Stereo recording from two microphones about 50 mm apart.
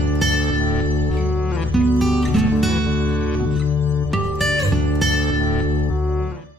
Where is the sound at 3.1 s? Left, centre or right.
Left.